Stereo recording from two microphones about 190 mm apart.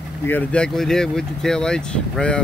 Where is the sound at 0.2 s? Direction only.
10° left (ahead or behind).